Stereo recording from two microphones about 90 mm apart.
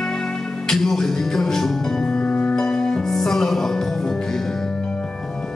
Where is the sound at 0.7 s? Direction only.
5° left (ahead or behind).